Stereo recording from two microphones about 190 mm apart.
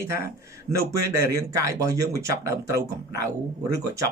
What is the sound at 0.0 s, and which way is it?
Speech, 15° right (ahead or behind).